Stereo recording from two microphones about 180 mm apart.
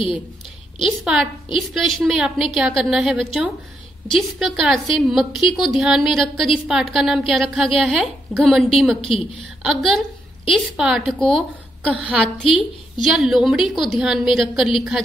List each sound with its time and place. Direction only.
0.8 s a woman's voice: centre (ahead or behind)
9.0 s a woman's voice: 30° left (ahead or behind)
9.6 s a woman's voice: centre (ahead or behind)